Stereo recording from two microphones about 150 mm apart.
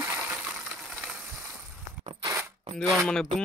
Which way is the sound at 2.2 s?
20° right (ahead or behind).